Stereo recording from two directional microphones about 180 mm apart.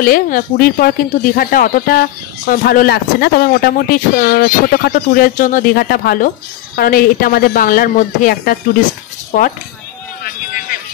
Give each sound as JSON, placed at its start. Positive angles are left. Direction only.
{"t": 0.0, "sound": "speech", "side_deg": 55}